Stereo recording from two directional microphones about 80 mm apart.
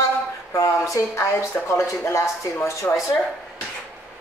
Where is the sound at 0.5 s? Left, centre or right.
Left.